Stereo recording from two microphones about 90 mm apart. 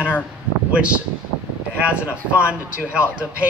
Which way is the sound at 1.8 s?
15° right (ahead or behind).